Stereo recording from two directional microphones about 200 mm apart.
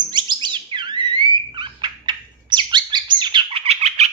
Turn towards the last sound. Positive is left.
turn(degrees=-30)  # may be behind; listen again after turning